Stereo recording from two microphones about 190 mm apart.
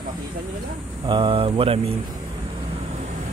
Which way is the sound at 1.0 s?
25° right (ahead or behind).